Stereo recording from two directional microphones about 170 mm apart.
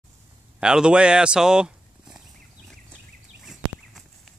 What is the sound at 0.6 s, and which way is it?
Speech, 5° right (ahead or behind).